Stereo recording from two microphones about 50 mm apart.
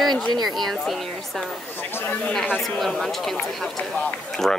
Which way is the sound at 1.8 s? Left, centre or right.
Left.